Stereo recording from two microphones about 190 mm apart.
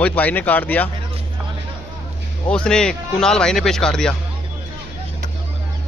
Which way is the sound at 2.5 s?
5° left (ahead or behind).